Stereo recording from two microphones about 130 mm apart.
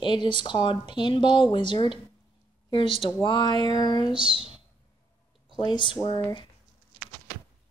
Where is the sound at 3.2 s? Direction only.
35° left (ahead or behind).